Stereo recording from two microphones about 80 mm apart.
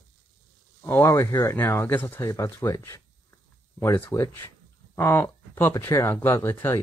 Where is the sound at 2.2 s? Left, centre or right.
Left.